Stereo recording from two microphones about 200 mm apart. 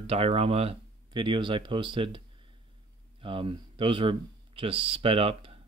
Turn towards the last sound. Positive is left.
turn(degrees=-30)  # may be behind; listen again after turning